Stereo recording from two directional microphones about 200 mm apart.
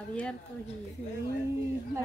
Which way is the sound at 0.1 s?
5° left (ahead or behind).